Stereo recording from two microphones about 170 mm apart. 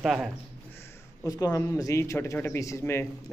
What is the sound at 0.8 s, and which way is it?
Speech, 20° left (ahead or behind).